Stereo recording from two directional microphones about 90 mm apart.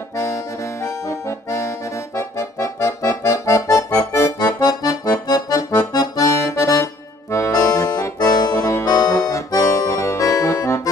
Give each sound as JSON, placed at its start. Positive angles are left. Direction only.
{"t": 0.8, "sound": "accordion", "side_deg": 35}
{"t": 4.4, "sound": "accordion", "side_deg": 45}